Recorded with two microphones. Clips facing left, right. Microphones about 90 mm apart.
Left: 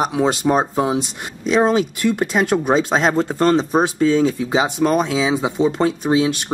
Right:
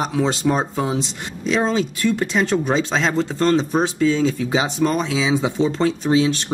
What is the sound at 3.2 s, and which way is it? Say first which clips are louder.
Speech: left 2 dB; 15° left (ahead or behind).